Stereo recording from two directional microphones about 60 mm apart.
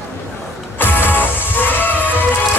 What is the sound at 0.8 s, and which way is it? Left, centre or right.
Music, left.